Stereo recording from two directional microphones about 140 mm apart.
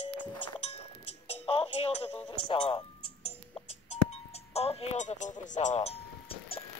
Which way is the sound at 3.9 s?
50° left (ahead or behind).